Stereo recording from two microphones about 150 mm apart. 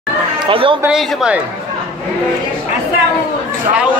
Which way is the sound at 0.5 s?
35° right (ahead or behind).